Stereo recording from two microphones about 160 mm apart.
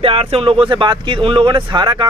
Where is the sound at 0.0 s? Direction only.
35° right (ahead or behind).